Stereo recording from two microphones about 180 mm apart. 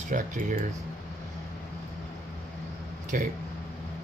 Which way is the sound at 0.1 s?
45° right (ahead or behind).